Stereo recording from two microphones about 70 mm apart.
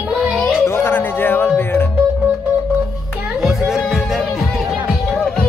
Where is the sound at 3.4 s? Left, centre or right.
Centre.